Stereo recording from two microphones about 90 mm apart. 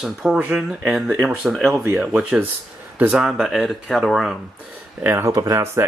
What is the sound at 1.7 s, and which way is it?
Speech, 30° right (ahead or behind).